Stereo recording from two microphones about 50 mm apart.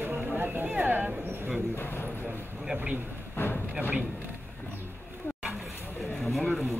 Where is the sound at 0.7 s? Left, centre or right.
Right.